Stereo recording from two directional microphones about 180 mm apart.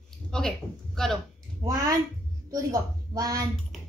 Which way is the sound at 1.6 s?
20° right (ahead or behind).